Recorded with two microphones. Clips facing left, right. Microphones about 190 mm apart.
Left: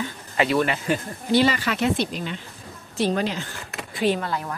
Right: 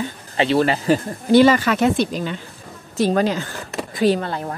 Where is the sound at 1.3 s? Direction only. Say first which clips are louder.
Right 7 dB; 50° right (ahead or behind).